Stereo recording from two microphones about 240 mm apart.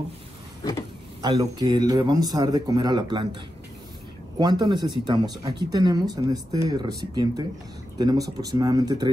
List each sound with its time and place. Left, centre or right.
1.2 s a man's voice: centre
4.4 s a man's voice: centre